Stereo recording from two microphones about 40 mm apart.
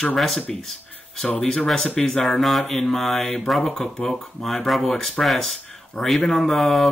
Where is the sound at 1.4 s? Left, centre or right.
Left.